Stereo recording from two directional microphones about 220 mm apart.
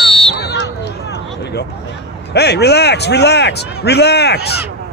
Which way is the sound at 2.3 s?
50° left (ahead or behind).